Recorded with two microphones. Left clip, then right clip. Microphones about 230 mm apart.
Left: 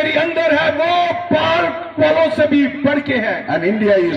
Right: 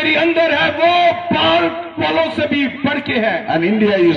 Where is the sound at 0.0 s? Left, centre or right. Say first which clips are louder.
Right 2 dB; right.